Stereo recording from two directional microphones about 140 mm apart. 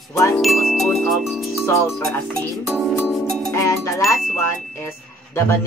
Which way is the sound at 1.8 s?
20° left (ahead or behind).